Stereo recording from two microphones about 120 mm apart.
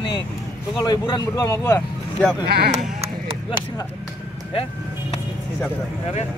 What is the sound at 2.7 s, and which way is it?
Sheep, 60° right (ahead or behind).